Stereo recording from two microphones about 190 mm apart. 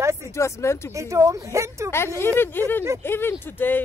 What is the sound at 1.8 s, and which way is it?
Speech, 15° left (ahead or behind).